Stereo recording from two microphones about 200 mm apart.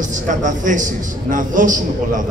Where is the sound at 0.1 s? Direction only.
40° right (ahead or behind).